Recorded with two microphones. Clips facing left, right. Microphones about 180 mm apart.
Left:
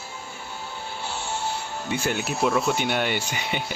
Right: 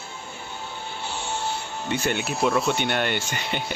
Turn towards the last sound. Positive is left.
turn(degrees=5)  # may be behind; listen again after turning